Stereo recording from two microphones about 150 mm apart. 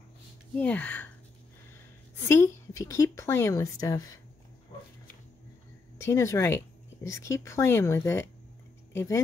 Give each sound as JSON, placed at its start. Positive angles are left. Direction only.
{"t": 0.6, "sound": "a woman's voice", "side_deg": 10}
{"t": 2.2, "sound": "a woman's voice", "side_deg": 15}
{"t": 5.9, "sound": "a woman's voice", "side_deg": 20}